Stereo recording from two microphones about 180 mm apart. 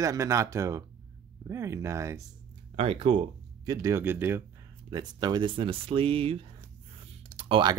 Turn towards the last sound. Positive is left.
turn(degrees=-25)  # may be behind; listen again after turning